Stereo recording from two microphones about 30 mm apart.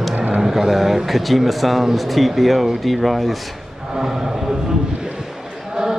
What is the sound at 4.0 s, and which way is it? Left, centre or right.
Speech, centre.